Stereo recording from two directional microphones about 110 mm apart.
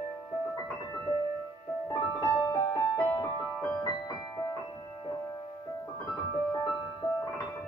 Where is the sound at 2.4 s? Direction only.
35° left (ahead or behind).